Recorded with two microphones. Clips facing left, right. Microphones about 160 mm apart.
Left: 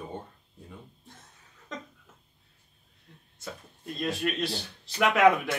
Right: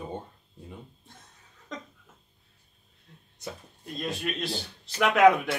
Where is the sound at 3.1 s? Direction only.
Centre (ahead or behind).